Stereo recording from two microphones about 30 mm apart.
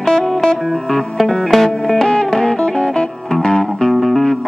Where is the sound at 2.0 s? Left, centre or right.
Left.